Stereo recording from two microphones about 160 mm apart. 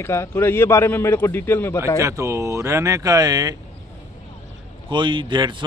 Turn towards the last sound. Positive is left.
turn(degrees=-30)  # may be behind; listen again after turning